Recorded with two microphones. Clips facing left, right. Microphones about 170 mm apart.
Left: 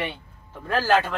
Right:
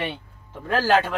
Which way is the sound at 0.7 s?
5° right (ahead or behind).